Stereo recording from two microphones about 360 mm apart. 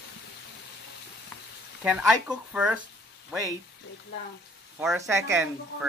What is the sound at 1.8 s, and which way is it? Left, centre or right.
Speech, centre.